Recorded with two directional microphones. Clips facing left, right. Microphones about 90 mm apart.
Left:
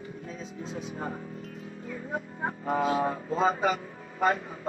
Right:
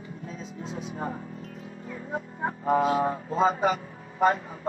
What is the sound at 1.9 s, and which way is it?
Music, 30° right (ahead or behind).